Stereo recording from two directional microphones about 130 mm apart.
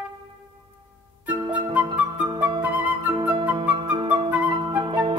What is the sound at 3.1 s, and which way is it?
Flute, 40° right (ahead or behind).